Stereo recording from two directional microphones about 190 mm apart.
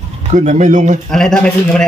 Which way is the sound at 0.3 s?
40° right (ahead or behind).